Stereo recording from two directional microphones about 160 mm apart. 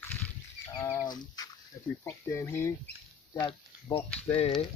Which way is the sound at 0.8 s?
25° left (ahead or behind).